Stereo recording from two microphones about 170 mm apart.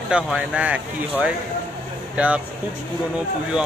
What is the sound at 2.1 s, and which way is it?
Speech, 10° right (ahead or behind).